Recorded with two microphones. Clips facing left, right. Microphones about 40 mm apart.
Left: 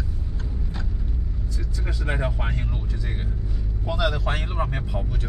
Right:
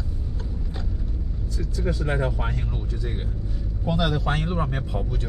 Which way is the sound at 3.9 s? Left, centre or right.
Centre.